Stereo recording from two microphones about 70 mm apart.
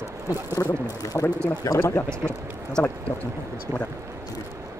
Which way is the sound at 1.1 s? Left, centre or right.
Left.